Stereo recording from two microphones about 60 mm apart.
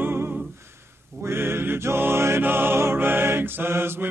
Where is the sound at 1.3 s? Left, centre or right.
Right.